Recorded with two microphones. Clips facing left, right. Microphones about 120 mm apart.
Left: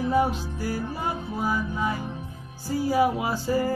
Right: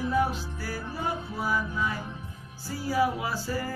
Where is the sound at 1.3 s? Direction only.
25° left (ahead or behind).